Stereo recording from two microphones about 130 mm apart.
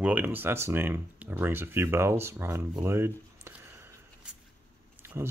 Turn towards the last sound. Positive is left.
turn(degrees=-20)  # may be behind; listen again after turning